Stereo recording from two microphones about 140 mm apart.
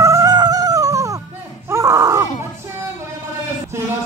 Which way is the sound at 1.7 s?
25° right (ahead or behind).